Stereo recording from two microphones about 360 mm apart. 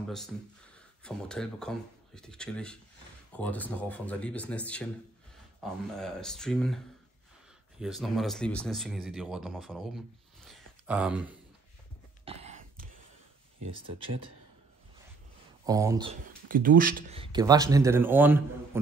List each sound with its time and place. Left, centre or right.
1.0 s speech: centre
7.8 s speech: centre
12.3 s a sound: centre
15.6 s speech: centre